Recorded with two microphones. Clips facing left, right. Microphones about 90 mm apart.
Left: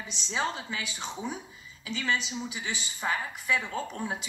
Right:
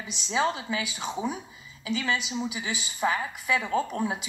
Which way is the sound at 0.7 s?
10° right (ahead or behind).